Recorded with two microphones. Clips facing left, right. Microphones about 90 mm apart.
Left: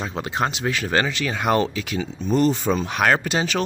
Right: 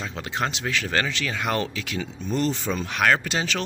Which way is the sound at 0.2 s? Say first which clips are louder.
Left 4 dB; 25° left (ahead or behind).